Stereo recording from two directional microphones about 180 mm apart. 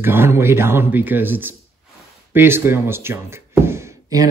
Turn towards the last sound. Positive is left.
turn(degrees=-15)  # may be behind; listen again after turning